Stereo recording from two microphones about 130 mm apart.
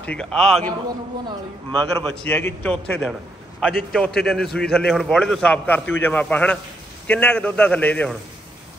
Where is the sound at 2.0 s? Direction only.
10° left (ahead or behind).